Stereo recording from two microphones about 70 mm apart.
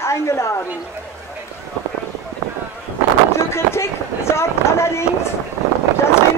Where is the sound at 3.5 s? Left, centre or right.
Left.